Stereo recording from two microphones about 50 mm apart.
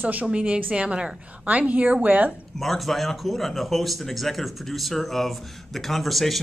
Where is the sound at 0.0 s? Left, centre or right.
Right.